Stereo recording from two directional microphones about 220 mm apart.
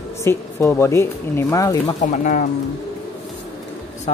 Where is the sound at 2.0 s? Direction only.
35° left (ahead or behind).